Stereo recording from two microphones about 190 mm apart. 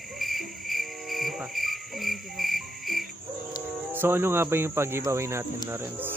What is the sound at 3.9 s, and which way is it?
Speech, 10° right (ahead or behind).